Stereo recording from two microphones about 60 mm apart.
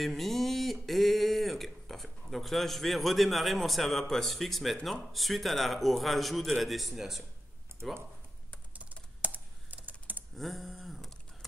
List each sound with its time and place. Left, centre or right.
0.0 s a man's voice: centre
8.7 s computer keyboard: right
9.8 s typing: right
10.3 s a sound: centre